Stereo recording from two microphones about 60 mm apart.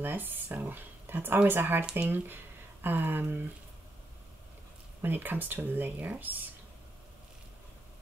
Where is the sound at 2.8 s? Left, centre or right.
Right.